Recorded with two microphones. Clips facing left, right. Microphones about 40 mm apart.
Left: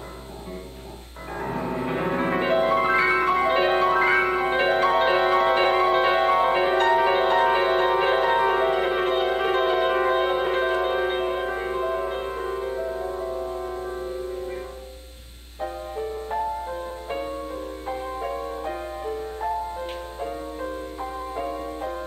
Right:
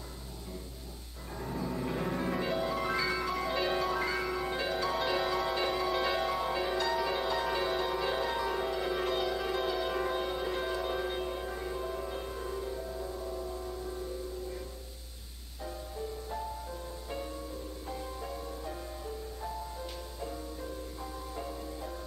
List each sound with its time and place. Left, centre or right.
1.4 s music: left
15.6 s music: left